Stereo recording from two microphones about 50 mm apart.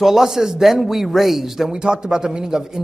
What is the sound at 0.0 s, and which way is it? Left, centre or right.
A man's voice, centre.